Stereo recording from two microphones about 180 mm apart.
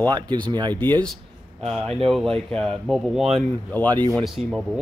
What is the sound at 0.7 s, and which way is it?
Speech, 10° left (ahead or behind).